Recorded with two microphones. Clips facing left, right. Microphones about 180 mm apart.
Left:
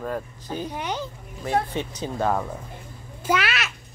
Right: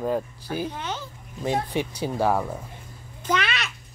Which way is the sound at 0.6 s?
15° left (ahead or behind).